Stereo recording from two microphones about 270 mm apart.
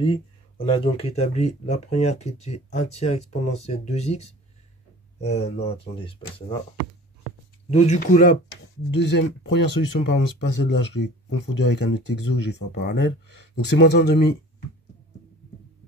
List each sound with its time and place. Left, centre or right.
0.0 s speech: left
7.7 s speech: left